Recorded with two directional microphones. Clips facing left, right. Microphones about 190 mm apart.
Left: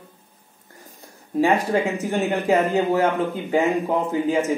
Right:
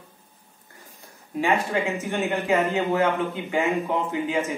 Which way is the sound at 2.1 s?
35° left (ahead or behind).